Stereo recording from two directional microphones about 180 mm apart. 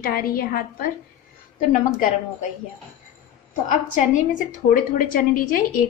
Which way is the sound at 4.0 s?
45° left (ahead or behind).